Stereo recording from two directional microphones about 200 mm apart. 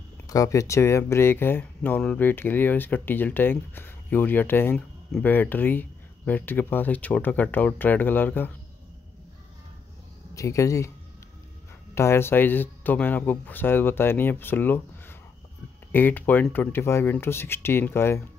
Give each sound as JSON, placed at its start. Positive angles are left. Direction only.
{"t": 0.3, "sound": "speech", "side_deg": 15}
{"t": 10.3, "sound": "speech", "side_deg": 15}
{"t": 11.9, "sound": "speech", "side_deg": 15}